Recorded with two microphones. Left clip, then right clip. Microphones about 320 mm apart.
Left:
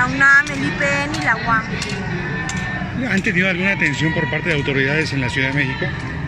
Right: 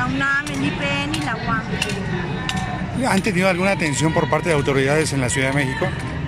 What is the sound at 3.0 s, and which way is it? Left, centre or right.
Speech, centre.